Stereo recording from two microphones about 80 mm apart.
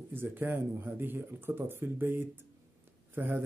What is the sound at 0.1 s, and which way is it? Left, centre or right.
Speech, right.